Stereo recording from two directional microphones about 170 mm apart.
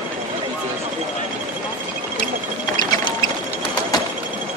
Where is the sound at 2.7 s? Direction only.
25° left (ahead or behind).